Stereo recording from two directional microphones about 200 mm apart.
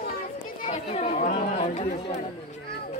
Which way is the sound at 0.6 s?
30° left (ahead or behind).